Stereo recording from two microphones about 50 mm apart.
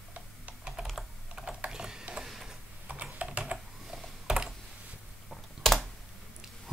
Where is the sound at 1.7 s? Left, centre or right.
Centre.